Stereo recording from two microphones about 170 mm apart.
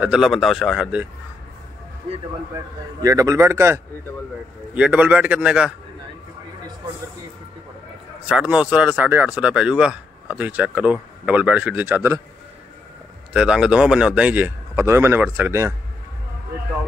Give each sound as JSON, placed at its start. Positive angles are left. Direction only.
{"t": 0.0, "sound": "speech", "side_deg": -5}
{"t": 2.5, "sound": "speech", "side_deg": -20}
{"t": 8.3, "sound": "speech", "side_deg": -5}
{"t": 13.3, "sound": "speech", "side_deg": -5}